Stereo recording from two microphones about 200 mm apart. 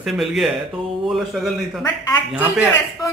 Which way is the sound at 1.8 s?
20° left (ahead or behind).